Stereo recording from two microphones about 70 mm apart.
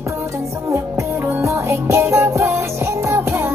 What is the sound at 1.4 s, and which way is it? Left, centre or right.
Music, right.